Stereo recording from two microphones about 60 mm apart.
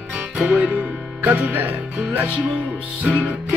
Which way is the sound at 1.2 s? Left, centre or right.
Right.